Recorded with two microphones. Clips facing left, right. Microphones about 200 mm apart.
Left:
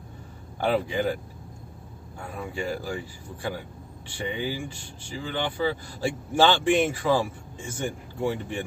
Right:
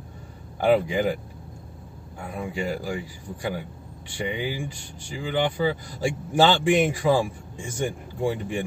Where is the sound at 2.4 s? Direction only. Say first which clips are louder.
Right 2 dB; 15° right (ahead or behind).